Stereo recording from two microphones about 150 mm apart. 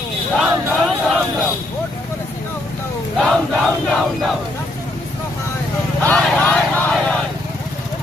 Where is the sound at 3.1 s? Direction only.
5° left (ahead or behind).